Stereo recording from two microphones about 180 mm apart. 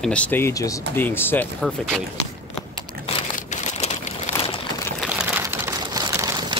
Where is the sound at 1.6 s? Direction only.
Centre (ahead or behind).